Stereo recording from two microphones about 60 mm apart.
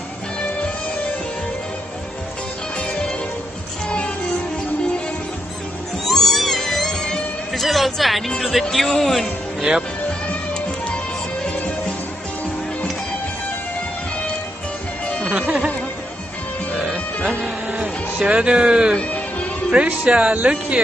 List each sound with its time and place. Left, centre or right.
2.8 s music: centre
6.0 s cat: centre
7.6 s speech: centre
9.6 s speech: centre
15.3 s music: right
17.3 s music: right
19.7 s speech: right